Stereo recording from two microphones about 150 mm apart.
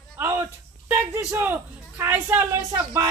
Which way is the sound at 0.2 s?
20° right (ahead or behind).